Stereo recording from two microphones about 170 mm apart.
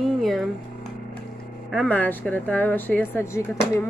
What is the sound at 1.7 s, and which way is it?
A woman's voice, 5° left (ahead or behind).